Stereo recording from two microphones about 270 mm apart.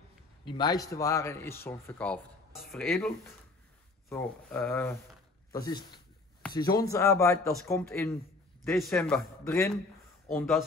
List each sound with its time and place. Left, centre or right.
0.5 s speech: centre
4.1 s a man's voice: centre